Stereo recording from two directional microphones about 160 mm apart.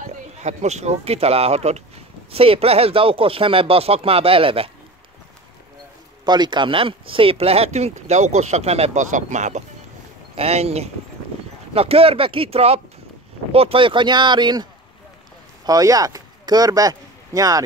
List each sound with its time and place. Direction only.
0.4 s speech: 45° right (ahead or behind)
6.2 s speech: 25° right (ahead or behind)